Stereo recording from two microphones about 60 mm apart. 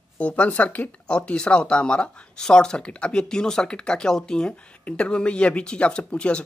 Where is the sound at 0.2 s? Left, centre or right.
Left.